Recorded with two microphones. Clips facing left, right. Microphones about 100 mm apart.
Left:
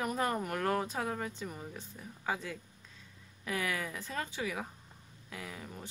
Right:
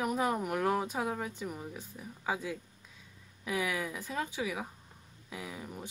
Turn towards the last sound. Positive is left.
turn(degrees=-10)  # may be behind; listen again after turning